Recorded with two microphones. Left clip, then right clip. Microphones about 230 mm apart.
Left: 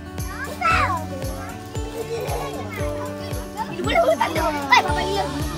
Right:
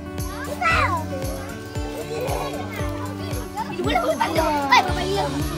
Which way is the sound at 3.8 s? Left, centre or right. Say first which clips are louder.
Left 3 dB; centre.